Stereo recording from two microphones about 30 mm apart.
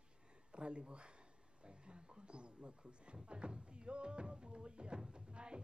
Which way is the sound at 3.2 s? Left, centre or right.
Right.